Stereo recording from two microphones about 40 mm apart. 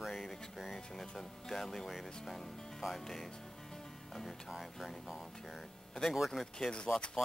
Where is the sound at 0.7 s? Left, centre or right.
Centre.